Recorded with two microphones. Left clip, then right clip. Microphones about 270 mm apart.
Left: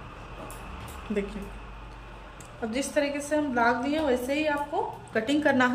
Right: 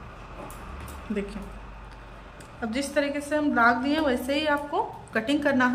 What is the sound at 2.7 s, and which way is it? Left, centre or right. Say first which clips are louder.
A woman's voice: right 1 dB; centre.